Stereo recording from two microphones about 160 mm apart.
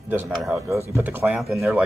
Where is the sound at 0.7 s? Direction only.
15° right (ahead or behind).